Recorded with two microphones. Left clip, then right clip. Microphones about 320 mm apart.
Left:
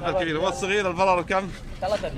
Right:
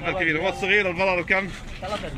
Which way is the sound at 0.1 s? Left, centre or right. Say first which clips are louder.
Right 3 dB; left.